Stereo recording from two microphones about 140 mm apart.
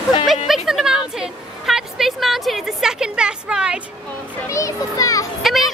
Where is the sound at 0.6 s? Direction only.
5° right (ahead or behind).